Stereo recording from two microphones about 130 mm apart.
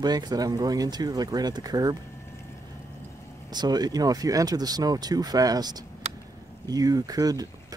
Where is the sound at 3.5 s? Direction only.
30° right (ahead or behind).